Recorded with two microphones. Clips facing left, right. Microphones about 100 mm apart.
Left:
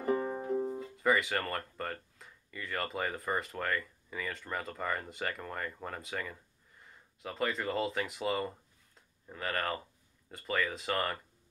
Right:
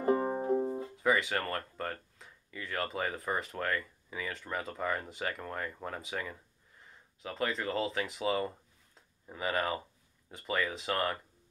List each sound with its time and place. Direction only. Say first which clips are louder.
0.0 s music: right 3 dB; 30° right (ahead or behind)
0.9 s speech: left 1 dB; centre (ahead or behind)